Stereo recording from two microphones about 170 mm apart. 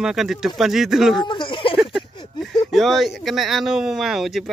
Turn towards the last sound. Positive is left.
turn(degrees=0)  # may be behind; listen again after turning